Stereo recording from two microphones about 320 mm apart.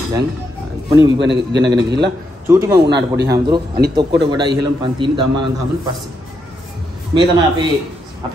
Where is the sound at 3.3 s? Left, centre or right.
Centre.